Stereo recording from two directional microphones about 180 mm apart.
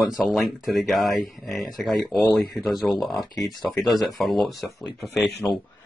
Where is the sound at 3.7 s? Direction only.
Centre (ahead or behind).